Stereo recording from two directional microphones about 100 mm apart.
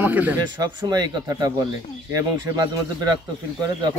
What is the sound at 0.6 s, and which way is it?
Speech, 40° right (ahead or behind).